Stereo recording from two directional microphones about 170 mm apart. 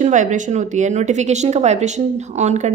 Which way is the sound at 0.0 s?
45° right (ahead or behind).